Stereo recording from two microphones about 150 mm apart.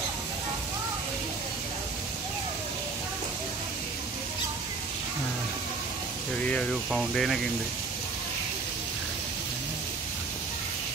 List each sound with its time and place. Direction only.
6.4 s speech: 10° left (ahead or behind)